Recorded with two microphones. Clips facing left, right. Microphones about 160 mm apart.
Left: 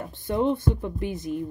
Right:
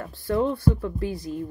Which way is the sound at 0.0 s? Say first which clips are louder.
Even; 20° left (ahead or behind).